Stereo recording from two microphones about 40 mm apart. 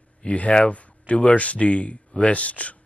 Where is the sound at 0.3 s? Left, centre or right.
Left.